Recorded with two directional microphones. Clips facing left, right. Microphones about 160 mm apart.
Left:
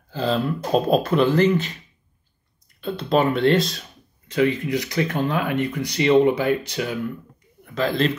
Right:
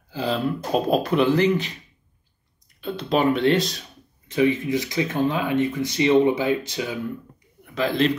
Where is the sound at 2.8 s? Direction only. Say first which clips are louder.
Left 1 dB; 15° right (ahead or behind).